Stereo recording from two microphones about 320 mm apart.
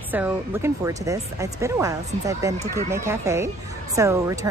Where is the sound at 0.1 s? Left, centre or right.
Centre.